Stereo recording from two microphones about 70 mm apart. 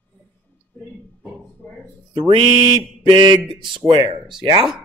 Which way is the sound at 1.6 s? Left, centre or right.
Left.